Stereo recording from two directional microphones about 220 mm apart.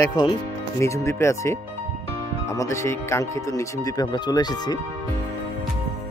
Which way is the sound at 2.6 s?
15° left (ahead or behind).